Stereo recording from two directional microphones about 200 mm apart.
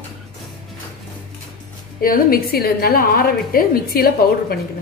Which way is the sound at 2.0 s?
45° left (ahead or behind).